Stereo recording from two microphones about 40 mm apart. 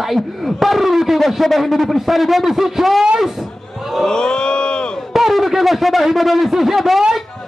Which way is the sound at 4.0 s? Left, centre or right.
Centre.